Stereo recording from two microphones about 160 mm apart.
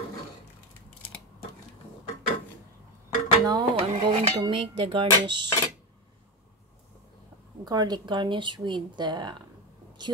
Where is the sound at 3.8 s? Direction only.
40° right (ahead or behind).